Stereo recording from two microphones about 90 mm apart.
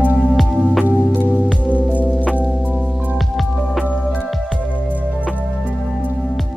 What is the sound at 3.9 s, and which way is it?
Music, 10° left (ahead or behind).